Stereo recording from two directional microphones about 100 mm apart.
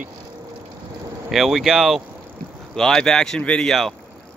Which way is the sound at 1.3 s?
5° right (ahead or behind).